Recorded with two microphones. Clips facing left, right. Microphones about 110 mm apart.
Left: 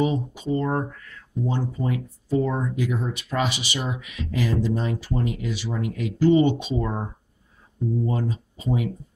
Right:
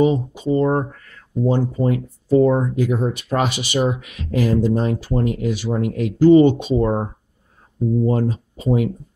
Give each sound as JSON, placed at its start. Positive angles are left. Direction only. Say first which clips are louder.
{"t": 0.0, "sound": "speech", "louder": "right 7 dB", "side_deg": -30}
{"t": 1.4, "sound": "speech", "louder": "right 8 dB", "side_deg": -40}
{"t": 8.1, "sound": "speech", "louder": "right 7 dB", "side_deg": -55}